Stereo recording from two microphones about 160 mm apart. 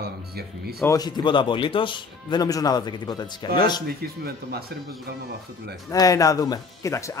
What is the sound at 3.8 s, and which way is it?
Speech, 75° right (ahead or behind).